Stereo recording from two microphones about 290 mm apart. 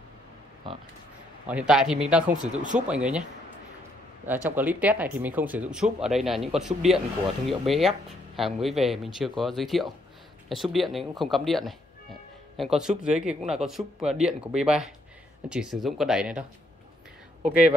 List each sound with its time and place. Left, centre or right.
1.5 s speech: centre
2.5 s speech: right
2.9 s speech: centre
4.3 s speech: centre
12.7 s speech: centre